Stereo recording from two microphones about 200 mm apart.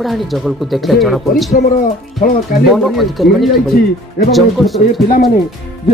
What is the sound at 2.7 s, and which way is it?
Speech, centre (ahead or behind).